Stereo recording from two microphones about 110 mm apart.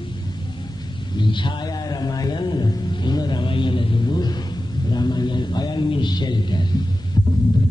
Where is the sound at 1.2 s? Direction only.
45° left (ahead or behind).